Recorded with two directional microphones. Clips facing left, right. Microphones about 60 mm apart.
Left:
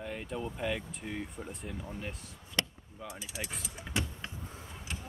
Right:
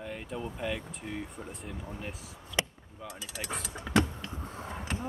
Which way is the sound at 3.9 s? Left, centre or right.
Right.